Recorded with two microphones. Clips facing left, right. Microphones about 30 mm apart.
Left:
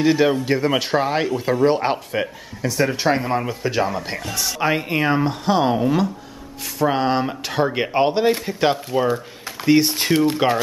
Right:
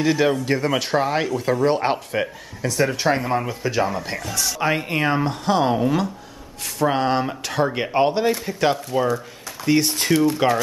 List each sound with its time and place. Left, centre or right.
0.0 s speech: centre
10.2 s speech: left